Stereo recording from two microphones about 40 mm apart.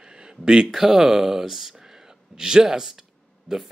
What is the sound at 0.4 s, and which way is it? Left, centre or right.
Speech, centre.